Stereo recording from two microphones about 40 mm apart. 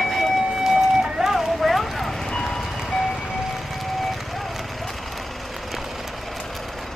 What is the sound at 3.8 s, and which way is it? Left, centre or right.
Vehicle, centre.